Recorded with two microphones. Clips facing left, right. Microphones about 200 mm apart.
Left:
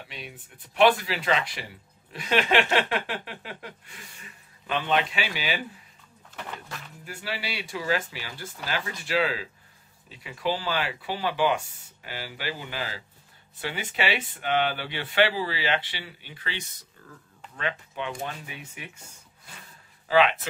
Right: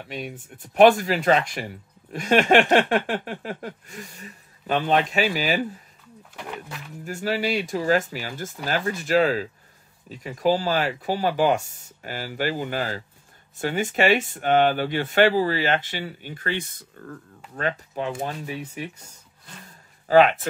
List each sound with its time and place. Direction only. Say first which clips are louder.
0.1 s speech: right 9 dB; 45° right (ahead or behind)
6.3 s speech: right 3 dB; 10° right (ahead or behind)
7.1 s speech: right 10 dB; 45° right (ahead or behind)
17.6 s speech: right 5 dB; 40° right (ahead or behind)